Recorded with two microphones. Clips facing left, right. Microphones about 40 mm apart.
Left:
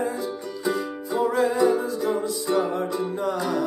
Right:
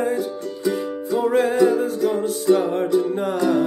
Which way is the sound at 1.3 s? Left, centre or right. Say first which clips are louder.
Right 4 dB; right.